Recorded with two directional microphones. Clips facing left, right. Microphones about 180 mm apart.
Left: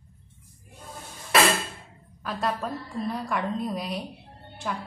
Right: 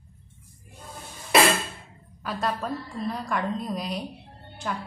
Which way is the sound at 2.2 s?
Centre (ahead or behind).